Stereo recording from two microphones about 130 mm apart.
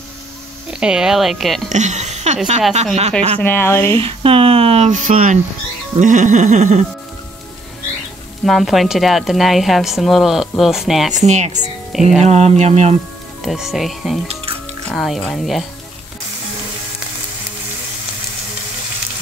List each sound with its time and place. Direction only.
0.7 s speech: 5° right (ahead or behind)
1.7 s speech: 65° right (ahead or behind)
3.3 s speech: 15° left (ahead or behind)
3.9 s speech: 45° right (ahead or behind); by 5.4 s 80° right
5.9 s music: 75° right (ahead or behind)
8.5 s speech: centre (ahead or behind)
11.2 s speech: 65° right (ahead or behind)
11.9 s speech: centre (ahead or behind)
12.3 s speech: 55° right (ahead or behind)
13.4 s speech: 5° right (ahead or behind)
14.2 s music: 45° right (ahead or behind)
14.9 s speech: centre (ahead or behind)